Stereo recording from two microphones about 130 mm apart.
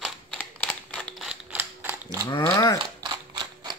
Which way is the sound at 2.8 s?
40° right (ahead or behind).